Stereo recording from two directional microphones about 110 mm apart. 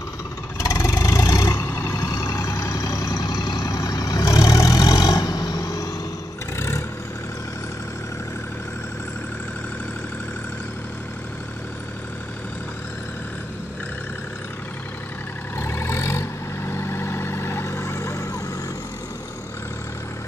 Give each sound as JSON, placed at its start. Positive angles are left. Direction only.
{"t": 0.6, "sound": "vehicle", "side_deg": 30}
{"t": 15.5, "sound": "vehicle", "side_deg": 25}